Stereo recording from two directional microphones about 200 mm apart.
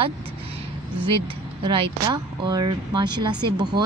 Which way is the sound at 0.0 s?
30° right (ahead or behind).